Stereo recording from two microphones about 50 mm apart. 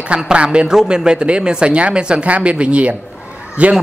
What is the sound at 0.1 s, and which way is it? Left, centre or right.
Speech, right.